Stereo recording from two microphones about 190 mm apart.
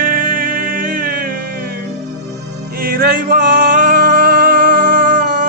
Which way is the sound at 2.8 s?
50° right (ahead or behind).